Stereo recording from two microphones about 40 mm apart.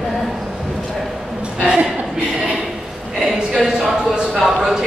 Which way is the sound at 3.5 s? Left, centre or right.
Centre.